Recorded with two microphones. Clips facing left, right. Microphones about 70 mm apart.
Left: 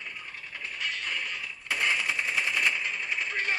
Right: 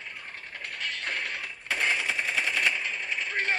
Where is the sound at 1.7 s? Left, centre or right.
Right.